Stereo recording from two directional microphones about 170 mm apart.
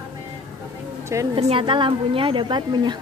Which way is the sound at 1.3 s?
30° right (ahead or behind).